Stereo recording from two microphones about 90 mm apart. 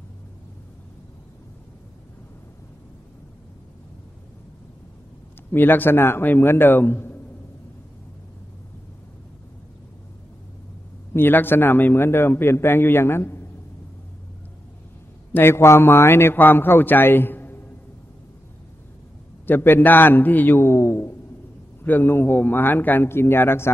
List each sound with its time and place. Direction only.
5.5 s a man's voice: 20° left (ahead or behind)
11.1 s a man's voice: 25° left (ahead or behind)
15.3 s a man's voice: 25° left (ahead or behind)
19.4 s a man's voice: 25° left (ahead or behind)